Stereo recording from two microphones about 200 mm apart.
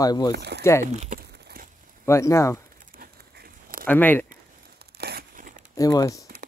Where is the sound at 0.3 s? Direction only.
55° right (ahead or behind).